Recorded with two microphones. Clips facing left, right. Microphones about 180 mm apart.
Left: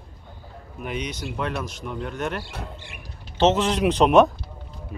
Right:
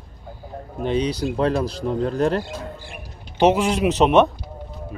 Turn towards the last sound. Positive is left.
turn(degrees=0)  # may be behind; listen again after turning